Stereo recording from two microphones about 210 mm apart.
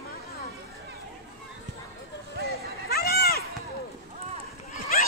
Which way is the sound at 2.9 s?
50° left (ahead or behind).